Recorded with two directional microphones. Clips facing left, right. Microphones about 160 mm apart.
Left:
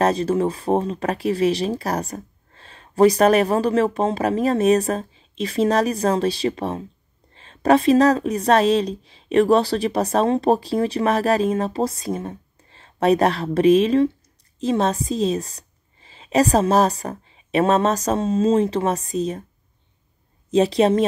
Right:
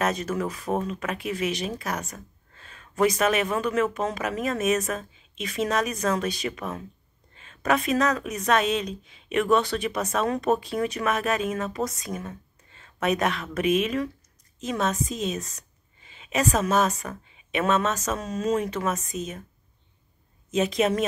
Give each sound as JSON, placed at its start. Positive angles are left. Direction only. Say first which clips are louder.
{"t": 0.0, "sound": "a woman's voice", "louder": "left 8 dB", "side_deg": 30}
{"t": 20.5, "sound": "speech", "louder": "left 7 dB", "side_deg": 35}